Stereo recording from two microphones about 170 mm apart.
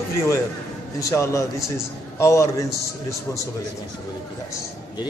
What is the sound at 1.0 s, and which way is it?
Speech, 15° left (ahead or behind).